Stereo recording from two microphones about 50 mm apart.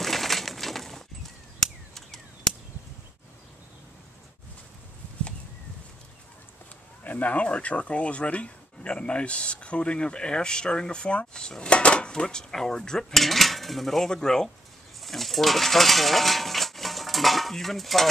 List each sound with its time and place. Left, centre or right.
0.0 s pigeon: centre
7.1 s speech: left
12.1 s cutlery: centre
15.0 s a sound: centre